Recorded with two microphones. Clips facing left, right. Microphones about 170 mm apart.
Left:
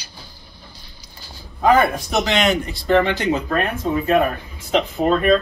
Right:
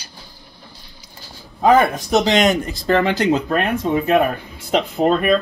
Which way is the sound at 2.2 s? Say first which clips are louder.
Right 3 dB; 40° right (ahead or behind).